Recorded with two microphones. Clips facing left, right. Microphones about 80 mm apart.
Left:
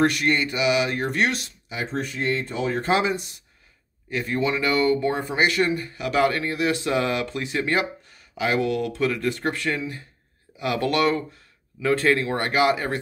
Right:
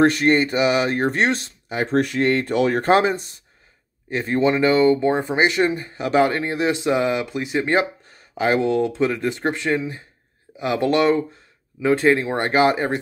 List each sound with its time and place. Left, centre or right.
0.0 s speech: right
1.9 s speech: right
2.8 s speech: right